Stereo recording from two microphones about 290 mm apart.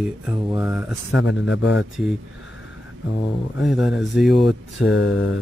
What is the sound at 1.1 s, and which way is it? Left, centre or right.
Mantra, left.